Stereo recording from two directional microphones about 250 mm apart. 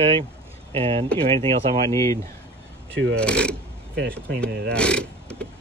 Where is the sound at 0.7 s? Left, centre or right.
Right.